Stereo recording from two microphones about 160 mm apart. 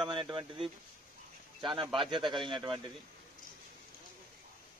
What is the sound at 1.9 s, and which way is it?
Speech, 30° right (ahead or behind).